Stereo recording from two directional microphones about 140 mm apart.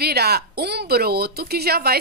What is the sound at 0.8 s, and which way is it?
Speech, 90° right.